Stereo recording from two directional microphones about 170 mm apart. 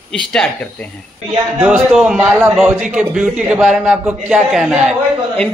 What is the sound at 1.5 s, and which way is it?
A man's voice, 5° right (ahead or behind).